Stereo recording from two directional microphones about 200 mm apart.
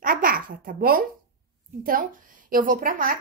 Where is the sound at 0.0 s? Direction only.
45° right (ahead or behind).